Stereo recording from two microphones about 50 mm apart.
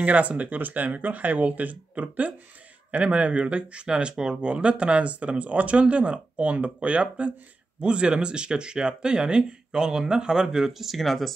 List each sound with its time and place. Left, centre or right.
0.0 s speech: right; by 11.3 s centre